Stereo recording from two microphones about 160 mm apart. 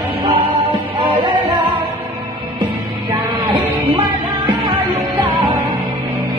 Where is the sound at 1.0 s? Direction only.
30° right (ahead or behind).